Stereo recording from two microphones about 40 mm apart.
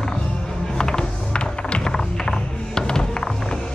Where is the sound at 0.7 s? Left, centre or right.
Centre.